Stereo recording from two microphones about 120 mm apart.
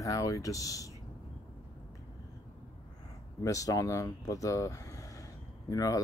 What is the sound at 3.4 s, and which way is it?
Speech, 30° left (ahead or behind).